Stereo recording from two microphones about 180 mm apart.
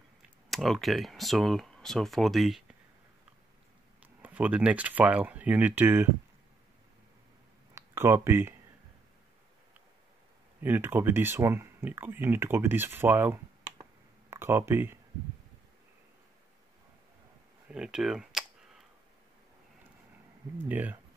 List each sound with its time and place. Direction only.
0.5 s speech: centre (ahead or behind)
4.0 s speech: 10° right (ahead or behind)
7.7 s speech: 15° right (ahead or behind)
10.6 s speech: 10° right (ahead or behind)
17.6 s clicking: 5° right (ahead or behind)
20.6 s speech: 10° right (ahead or behind)